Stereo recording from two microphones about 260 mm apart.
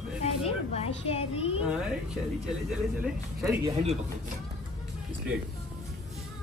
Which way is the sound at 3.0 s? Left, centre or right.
Centre.